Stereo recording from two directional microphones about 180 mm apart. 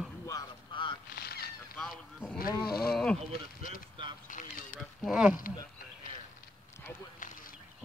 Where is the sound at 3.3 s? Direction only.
50° left (ahead or behind).